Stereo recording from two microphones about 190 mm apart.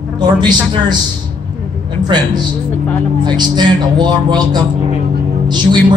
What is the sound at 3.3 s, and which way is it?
Speech, 25° right (ahead or behind).